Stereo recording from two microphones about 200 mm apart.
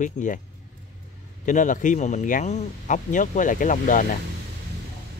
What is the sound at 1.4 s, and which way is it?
Speech, 40° left (ahead or behind).